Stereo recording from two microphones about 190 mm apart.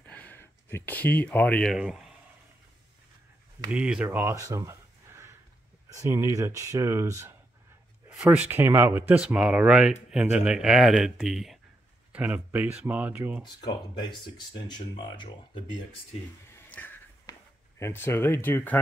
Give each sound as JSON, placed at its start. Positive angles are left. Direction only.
{"t": 0.0, "sound": "speech", "side_deg": 10}
{"t": 3.7, "sound": "speech", "side_deg": -5}
{"t": 13.4, "sound": "speech", "side_deg": 20}
{"t": 16.5, "sound": "a sound", "side_deg": 10}